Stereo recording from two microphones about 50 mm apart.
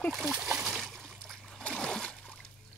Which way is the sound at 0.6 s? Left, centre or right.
Centre.